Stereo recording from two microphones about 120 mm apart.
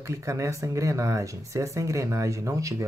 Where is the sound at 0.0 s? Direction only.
25° right (ahead or behind).